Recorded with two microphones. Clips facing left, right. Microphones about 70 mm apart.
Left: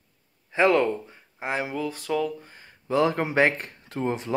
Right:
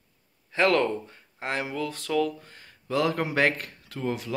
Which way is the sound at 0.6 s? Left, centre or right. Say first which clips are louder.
Left 2 dB; centre.